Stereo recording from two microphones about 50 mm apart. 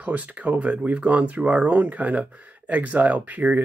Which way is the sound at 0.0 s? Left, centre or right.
Right.